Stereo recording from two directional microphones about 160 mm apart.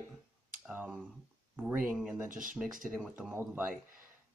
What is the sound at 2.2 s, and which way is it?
Speech, 55° right (ahead or behind).